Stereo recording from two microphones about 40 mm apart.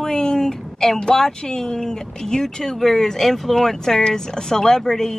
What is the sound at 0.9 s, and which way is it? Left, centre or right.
Speech, centre.